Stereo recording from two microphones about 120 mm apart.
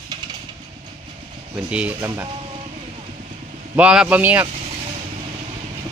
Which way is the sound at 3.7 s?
10° right (ahead or behind).